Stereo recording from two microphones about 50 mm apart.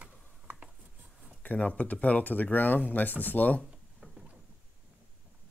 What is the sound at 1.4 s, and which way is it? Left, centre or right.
Speech, left.